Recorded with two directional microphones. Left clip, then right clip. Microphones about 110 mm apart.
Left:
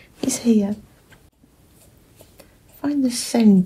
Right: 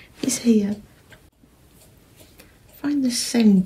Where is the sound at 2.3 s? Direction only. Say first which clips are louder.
Even; 45° left (ahead or behind).